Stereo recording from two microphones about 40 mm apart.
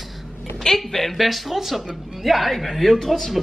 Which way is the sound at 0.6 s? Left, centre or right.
Centre.